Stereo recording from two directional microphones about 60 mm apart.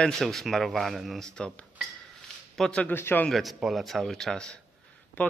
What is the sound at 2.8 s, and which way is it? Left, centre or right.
Speech, left.